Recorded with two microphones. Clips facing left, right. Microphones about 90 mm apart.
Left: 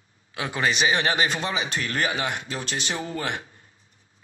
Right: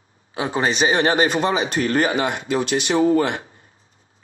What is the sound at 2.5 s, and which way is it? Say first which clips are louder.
Speech: right 10 dB; 65° right (ahead or behind).